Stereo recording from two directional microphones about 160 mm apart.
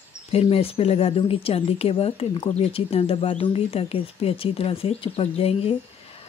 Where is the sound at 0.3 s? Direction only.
40° left (ahead or behind).